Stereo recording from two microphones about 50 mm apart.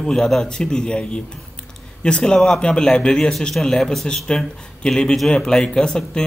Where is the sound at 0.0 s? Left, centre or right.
Centre.